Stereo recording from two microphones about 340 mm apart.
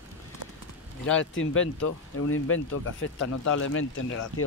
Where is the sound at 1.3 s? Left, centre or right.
Left.